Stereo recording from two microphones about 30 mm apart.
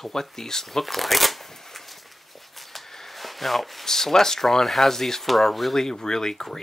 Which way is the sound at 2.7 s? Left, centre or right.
Centre.